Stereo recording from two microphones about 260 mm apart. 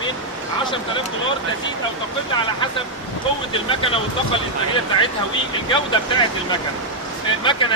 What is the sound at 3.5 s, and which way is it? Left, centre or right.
Speech, centre.